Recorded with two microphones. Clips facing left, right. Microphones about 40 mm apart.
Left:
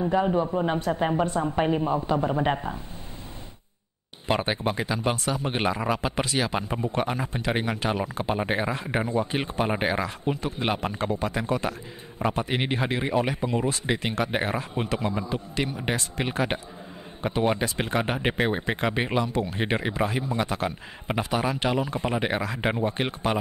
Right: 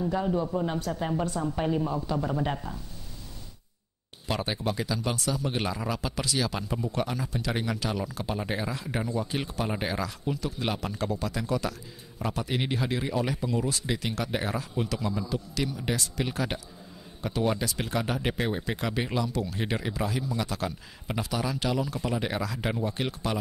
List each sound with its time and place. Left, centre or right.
0.0 s a man's voice: left
4.3 s a man's voice: left